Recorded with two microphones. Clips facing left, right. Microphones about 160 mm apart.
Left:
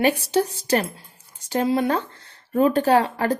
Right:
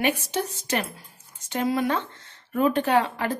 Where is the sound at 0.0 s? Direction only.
35° left (ahead or behind).